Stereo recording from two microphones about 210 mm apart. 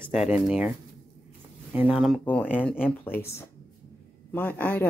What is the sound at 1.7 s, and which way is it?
Speech, 5° right (ahead or behind).